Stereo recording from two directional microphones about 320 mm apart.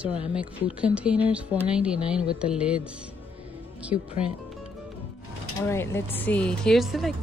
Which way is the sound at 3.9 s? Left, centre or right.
Left.